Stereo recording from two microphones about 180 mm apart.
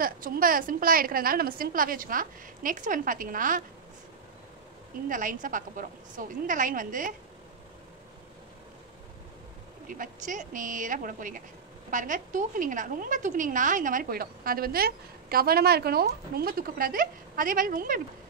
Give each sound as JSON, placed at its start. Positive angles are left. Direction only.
{"t": 0.0, "sound": "speech", "side_deg": -50}
{"t": 5.0, "sound": "speech", "side_deg": -50}
{"t": 9.8, "sound": "speech", "side_deg": -45}